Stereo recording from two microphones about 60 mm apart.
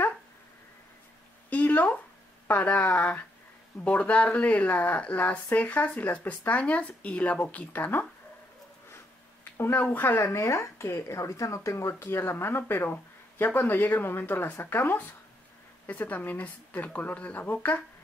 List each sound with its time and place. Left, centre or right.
1.5 s a sound: left
2.4 s speech: left
8.9 s a sound: left
9.9 s speech: left
10.2 s speech: left
15.9 s speech: left